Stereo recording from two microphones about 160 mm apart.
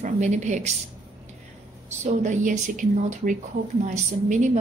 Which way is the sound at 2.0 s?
50° right (ahead or behind).